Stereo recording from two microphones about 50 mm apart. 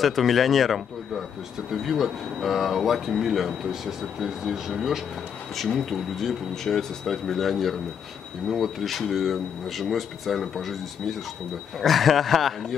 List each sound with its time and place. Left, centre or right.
0.0 s speech: centre